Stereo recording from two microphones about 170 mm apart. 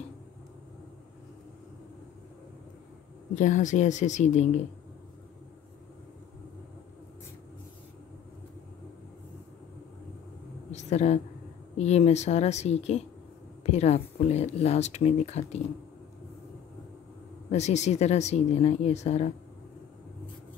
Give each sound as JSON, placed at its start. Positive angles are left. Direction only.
{"t": 3.3, "sound": "speech", "side_deg": 45}
{"t": 10.7, "sound": "a sound", "side_deg": 40}
{"t": 11.7, "sound": "speech", "side_deg": 40}
{"t": 17.5, "sound": "speech", "side_deg": 40}